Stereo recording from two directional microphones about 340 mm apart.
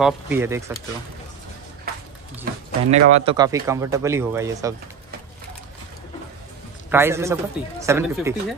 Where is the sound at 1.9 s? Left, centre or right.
Right.